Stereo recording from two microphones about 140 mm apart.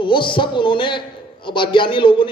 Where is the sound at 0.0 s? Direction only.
35° left (ahead or behind).